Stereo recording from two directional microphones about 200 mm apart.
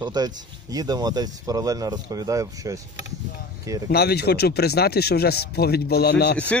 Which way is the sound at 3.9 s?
50° left (ahead or behind).